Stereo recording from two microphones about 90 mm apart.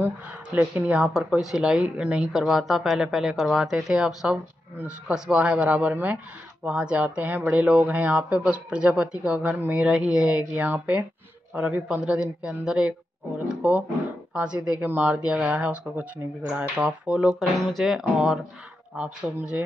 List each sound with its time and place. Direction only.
0.0 s a man's voice: 20° right (ahead or behind)
17.3 s speech: centre (ahead or behind); by 19.3 s 15° right (ahead or behind)